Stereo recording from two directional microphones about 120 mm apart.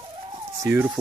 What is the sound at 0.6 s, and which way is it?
Speech, 20° right (ahead or behind).